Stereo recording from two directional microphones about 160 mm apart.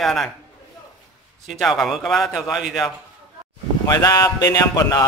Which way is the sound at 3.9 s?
20° left (ahead or behind).